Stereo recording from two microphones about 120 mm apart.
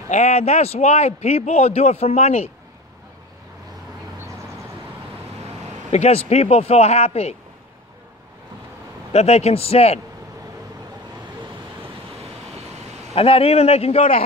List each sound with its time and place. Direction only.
0.1 s a man's voice: 65° left (ahead or behind)
5.9 s a man's voice: 60° left (ahead or behind)
9.1 s a man's voice: 60° left (ahead or behind)
13.1 s a man's voice: 55° left (ahead or behind)